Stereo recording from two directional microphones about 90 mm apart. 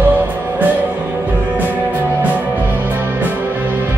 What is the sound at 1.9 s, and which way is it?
Music, 20° right (ahead or behind).